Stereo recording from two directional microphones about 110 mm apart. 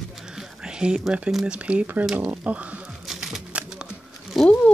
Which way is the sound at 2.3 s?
15° right (ahead or behind).